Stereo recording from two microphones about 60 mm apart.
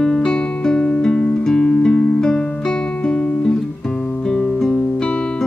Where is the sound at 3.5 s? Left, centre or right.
Centre.